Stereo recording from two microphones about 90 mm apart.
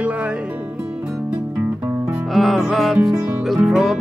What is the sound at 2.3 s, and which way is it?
Music, centre (ahead or behind).